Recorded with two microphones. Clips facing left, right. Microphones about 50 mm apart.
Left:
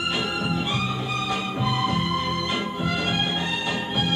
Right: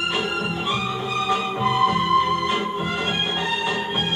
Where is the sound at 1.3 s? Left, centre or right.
Right.